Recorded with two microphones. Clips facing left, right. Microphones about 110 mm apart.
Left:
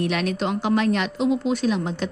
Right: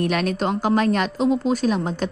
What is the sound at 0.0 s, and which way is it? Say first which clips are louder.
A woman's voice: right 2 dB; 45° right (ahead or behind).